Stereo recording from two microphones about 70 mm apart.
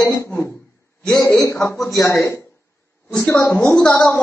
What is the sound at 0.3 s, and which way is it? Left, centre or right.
Speech, left.